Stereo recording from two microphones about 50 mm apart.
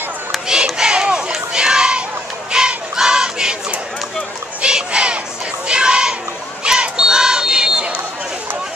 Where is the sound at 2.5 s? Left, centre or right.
Centre.